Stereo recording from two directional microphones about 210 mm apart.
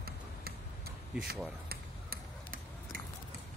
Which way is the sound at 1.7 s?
45° right (ahead or behind).